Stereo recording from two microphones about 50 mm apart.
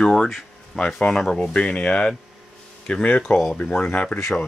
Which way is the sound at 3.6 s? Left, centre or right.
Centre.